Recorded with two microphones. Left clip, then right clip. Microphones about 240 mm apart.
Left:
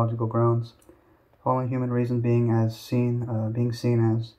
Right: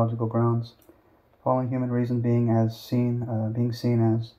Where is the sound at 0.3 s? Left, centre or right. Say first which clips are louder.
Left 2 dB; left.